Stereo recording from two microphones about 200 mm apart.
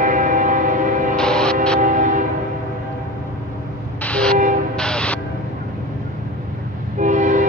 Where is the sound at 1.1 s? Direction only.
5° left (ahead or behind).